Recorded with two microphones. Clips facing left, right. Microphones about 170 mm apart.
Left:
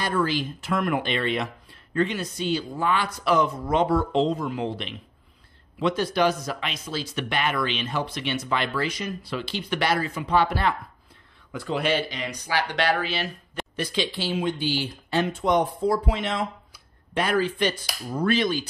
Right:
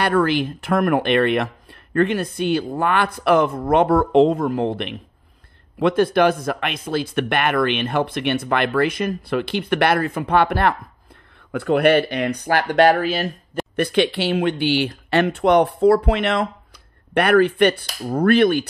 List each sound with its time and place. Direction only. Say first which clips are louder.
0.0 s speech: right 7 dB; 65° right (ahead or behind)